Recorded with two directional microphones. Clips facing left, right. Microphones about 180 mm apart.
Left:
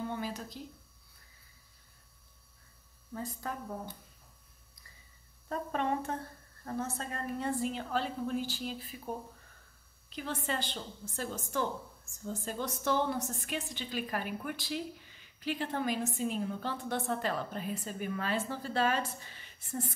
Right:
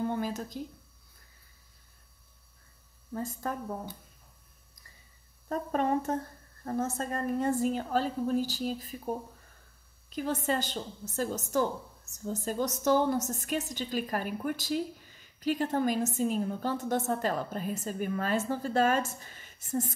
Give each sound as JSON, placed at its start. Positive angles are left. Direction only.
{"t": 0.0, "sound": "a sound", "side_deg": -45}
{"t": 3.1, "sound": "a woman's voice", "side_deg": -45}
{"t": 5.5, "sound": "a woman's voice", "side_deg": -40}